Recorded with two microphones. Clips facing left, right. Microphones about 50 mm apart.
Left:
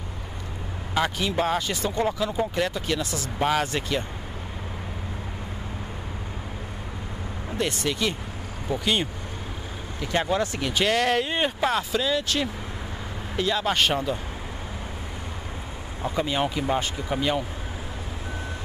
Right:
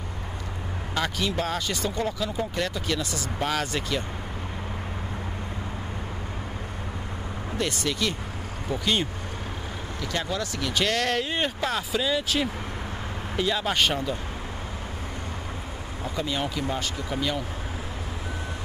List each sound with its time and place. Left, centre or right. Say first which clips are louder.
0.9 s speech: left 3 dB; centre
7.5 s speech: left 2 dB; centre
10.1 s speech: left 6 dB; left
10.7 s speech: left 2 dB; centre
11.9 s speech: left 1 dB; centre
16.0 s speech: left 4 dB; centre